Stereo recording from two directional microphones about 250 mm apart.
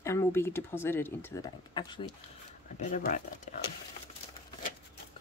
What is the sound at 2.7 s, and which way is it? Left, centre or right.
Speech, left.